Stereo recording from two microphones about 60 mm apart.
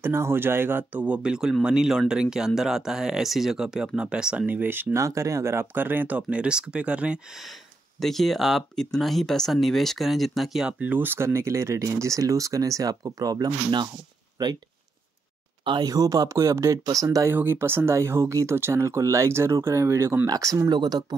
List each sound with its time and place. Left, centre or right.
0.0 s speech: right
1.0 s speech: centre
4.5 s speech: right
4.9 s speech: right
5.8 s speech: right
8.0 s speech: centre
10.7 s speech: right
11.2 s speech: right
15.8 s speech: right
17.3 s speech: right
20.2 s speech: right